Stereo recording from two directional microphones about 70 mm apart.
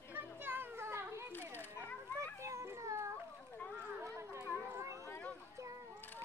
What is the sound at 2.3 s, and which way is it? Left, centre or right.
Cat, right.